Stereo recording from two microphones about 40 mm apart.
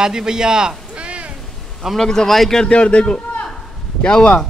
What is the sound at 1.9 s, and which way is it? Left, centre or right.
Speech, centre.